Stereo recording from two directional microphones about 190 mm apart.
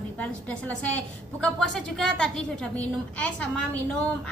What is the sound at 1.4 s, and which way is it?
A woman's voice, 5° left (ahead or behind).